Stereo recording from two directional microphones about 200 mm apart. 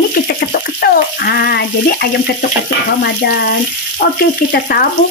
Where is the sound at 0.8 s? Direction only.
50° left (ahead or behind).